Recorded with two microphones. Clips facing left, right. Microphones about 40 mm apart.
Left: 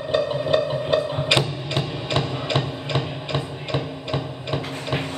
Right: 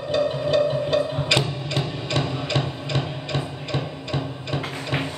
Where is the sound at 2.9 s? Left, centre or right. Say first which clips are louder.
Left 1 dB; centre.